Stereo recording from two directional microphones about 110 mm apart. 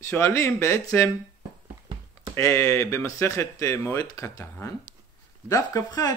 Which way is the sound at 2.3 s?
25° left (ahead or behind).